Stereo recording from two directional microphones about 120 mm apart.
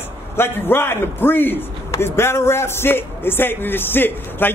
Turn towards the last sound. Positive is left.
turn(degrees=15)  # may be behind; listen again after turning